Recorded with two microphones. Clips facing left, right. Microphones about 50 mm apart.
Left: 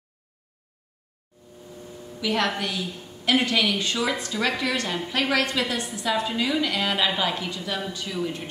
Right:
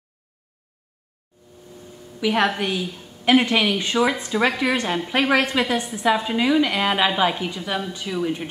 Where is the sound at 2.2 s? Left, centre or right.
Right.